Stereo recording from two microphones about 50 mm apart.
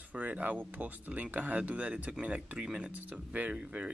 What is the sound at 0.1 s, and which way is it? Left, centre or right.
Speech, right.